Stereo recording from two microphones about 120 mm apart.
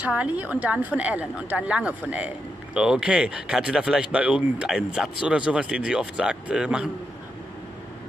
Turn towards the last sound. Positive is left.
turn(degrees=-10)  # may be behind; listen again after turning